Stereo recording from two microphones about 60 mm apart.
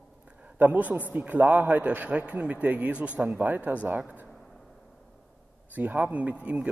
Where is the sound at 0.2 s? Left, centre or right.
Right.